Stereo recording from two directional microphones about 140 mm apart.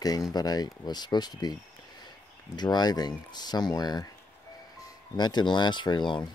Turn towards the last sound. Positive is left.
turn(degrees=30)  # may be behind; listen again after turning